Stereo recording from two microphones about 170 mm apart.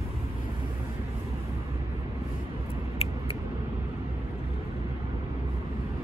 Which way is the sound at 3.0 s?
35° left (ahead or behind).